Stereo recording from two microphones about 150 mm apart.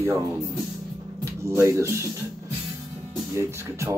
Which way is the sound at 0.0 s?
15° right (ahead or behind).